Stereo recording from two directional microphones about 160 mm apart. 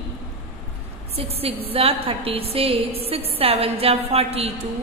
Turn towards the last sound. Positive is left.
turn(degrees=-40)  # may be behind; listen again after turning